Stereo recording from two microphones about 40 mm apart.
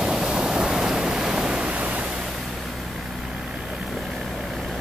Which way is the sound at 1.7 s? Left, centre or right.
Right.